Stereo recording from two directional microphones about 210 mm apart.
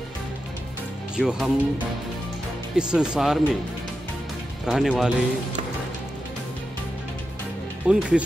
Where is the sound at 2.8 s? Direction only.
5° right (ahead or behind).